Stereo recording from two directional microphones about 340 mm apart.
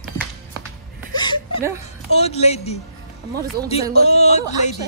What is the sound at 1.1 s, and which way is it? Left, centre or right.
Whimper, centre.